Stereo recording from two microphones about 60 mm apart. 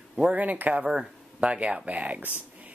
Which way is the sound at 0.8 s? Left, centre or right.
Centre.